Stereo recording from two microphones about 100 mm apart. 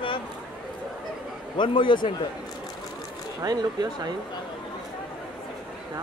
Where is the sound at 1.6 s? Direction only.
55° left (ahead or behind).